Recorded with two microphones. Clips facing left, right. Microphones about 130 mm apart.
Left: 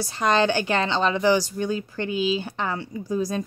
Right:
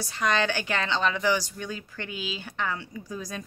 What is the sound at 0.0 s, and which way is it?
A woman's voice, 30° left (ahead or behind).